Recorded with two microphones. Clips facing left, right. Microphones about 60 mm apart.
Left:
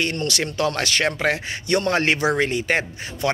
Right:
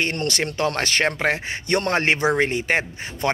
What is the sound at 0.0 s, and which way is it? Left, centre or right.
A man's voice, right.